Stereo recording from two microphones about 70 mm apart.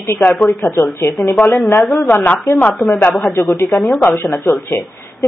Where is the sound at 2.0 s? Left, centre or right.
Left.